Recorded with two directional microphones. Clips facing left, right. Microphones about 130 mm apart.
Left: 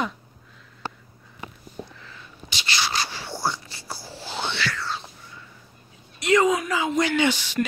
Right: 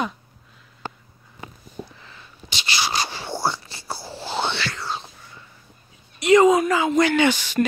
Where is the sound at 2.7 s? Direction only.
15° right (ahead or behind).